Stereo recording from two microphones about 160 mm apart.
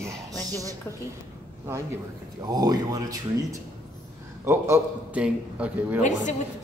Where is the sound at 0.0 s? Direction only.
20° right (ahead or behind).